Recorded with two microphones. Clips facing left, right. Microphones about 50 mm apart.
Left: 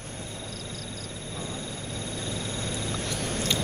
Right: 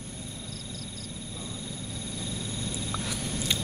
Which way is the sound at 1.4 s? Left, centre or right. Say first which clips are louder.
Left 4 dB; left.